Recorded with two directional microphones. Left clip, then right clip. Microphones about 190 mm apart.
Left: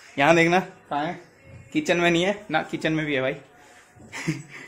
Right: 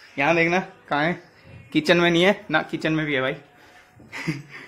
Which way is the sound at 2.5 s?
Centre (ahead or behind).